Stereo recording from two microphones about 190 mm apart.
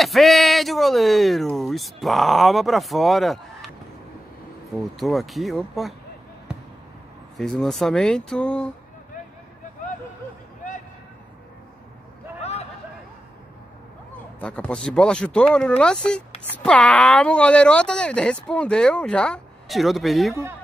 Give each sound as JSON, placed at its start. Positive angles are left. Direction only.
{"t": 0.0, "sound": "speech", "side_deg": 0}
{"t": 4.9, "sound": "speech", "side_deg": 0}
{"t": 7.3, "sound": "speech", "side_deg": 0}
{"t": 12.4, "sound": "a sound", "side_deg": 35}
{"t": 14.4, "sound": "speech", "side_deg": 5}